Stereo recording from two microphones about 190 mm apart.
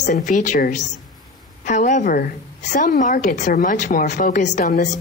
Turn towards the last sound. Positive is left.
turn(degrees=40)  # may be behind; listen again after turning